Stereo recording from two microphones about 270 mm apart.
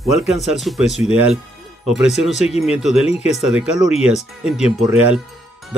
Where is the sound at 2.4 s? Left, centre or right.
Left.